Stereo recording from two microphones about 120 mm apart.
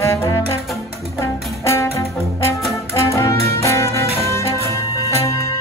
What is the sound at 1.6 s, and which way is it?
Music, 25° left (ahead or behind).